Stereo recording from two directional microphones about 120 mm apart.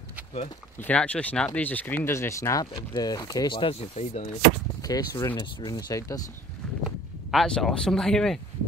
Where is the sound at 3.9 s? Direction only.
75° left (ahead or behind).